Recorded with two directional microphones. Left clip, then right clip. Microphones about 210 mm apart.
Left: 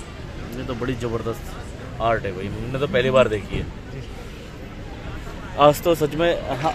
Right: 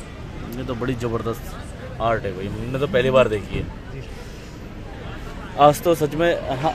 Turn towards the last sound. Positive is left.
turn(degrees=-15)  # may be behind; listen again after turning